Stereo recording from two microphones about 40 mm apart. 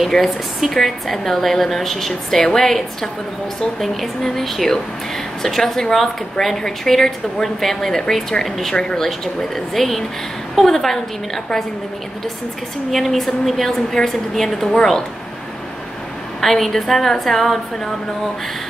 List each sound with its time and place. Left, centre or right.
0.1 s a woman's voice: centre
0.7 s a woman's voice: centre
9.8 s a woman's voice: centre
12.9 s a woman's voice: centre
16.3 s a woman's voice: centre